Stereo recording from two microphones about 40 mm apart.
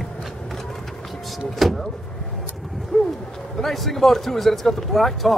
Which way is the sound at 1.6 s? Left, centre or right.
Centre.